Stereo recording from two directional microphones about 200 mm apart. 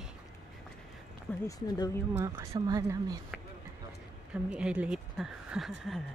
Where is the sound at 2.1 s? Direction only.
15° right (ahead or behind).